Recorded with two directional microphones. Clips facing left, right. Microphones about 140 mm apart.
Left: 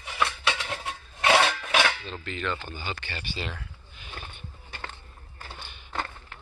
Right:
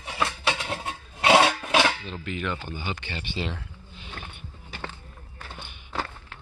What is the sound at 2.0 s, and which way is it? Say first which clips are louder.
Speech: right 2 dB; 10° right (ahead or behind).